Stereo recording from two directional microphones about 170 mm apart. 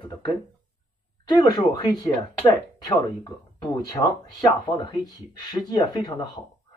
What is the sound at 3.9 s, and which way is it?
Speech, 25° left (ahead or behind).